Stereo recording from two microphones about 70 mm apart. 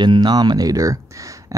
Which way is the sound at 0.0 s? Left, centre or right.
Right.